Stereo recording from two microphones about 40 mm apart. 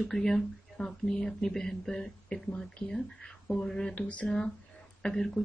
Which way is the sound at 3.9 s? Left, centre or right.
Left.